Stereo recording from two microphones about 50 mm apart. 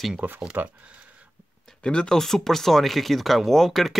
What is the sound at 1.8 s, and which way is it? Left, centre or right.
Speech, centre.